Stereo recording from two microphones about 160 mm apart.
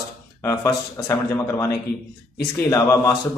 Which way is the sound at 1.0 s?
20° left (ahead or behind).